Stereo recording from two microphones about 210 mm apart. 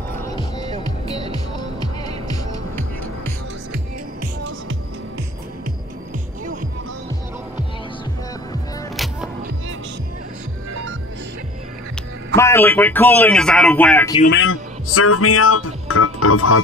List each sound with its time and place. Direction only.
0.1 s music: 15° left (ahead or behind)
8.9 s music: centre (ahead or behind)
12.4 s speech: 10° left (ahead or behind)
14.3 s speech: 70° left (ahead or behind); by 16.6 s 90° left